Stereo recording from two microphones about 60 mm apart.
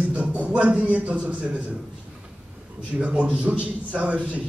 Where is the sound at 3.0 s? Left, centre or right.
Centre.